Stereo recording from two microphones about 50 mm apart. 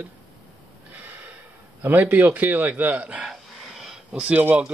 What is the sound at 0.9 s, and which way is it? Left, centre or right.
Snort, right.